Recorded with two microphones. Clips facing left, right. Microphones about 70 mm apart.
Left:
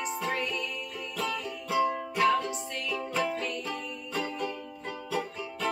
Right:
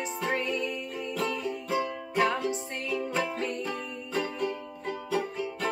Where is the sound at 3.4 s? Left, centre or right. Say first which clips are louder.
Right 2 dB; right.